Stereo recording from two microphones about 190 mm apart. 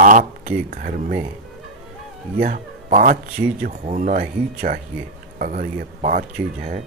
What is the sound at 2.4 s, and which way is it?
Speech, 45° right (ahead or behind).